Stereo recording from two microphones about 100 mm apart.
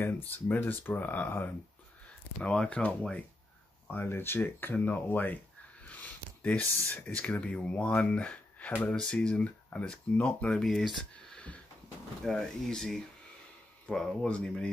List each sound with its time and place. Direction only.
0.0 s speech: 20° left (ahead or behind)
5.9 s a sound: 15° left (ahead or behind)
7.2 s speech: 15° left (ahead or behind)